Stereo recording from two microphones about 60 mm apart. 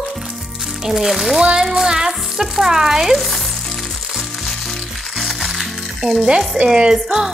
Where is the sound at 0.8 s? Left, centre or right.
Centre.